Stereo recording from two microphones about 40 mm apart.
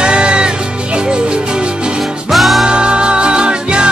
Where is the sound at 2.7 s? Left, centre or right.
Right.